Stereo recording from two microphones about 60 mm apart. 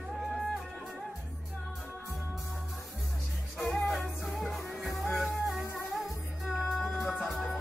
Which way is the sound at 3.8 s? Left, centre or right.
Centre.